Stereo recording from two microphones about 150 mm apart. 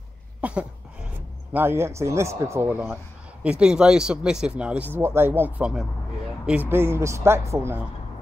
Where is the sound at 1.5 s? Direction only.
15° right (ahead or behind).